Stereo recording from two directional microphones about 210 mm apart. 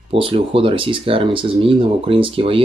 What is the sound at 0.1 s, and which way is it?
Speech, 25° right (ahead or behind).